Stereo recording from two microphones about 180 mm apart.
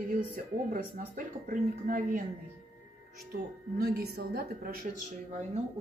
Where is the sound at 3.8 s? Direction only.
60° right (ahead or behind).